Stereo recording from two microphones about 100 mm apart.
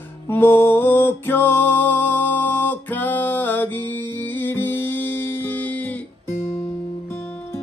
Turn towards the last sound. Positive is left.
turn(degrees=15)  # may be behind; listen again after turning